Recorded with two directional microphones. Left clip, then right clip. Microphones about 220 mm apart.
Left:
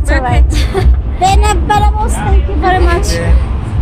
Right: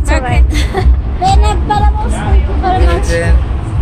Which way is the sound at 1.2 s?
25° left (ahead or behind).